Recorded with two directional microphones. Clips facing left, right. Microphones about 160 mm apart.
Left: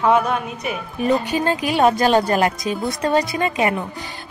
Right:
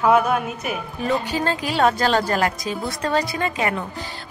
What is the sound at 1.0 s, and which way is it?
Speech, 15° left (ahead or behind).